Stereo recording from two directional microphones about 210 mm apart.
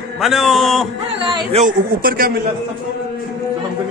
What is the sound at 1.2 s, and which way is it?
Speech, 25° right (ahead or behind).